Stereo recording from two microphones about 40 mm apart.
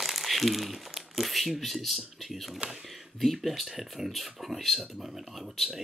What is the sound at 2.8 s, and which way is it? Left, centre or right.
Speech, centre.